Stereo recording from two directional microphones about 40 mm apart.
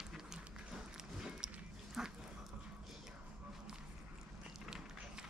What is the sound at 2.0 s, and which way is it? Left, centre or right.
Dog, centre.